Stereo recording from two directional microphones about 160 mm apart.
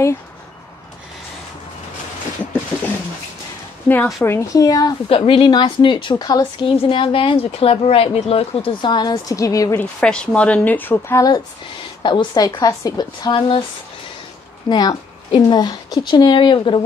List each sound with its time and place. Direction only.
3.9 s speech: 15° left (ahead or behind)
5.1 s a woman's voice: 35° left (ahead or behind)
9.8 s speech: 5° left (ahead or behind); by 13.7 s 30° left (ahead or behind)
14.7 s speech: 25° left (ahead or behind)